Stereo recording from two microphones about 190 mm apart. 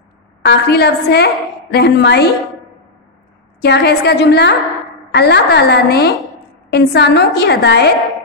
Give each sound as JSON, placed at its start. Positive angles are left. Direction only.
{"t": 0.5, "sound": "a woman's voice", "side_deg": 60}
{"t": 3.6, "sound": "a woman's voice", "side_deg": 60}